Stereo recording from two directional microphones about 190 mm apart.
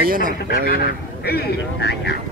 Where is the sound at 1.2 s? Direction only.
55° left (ahead or behind).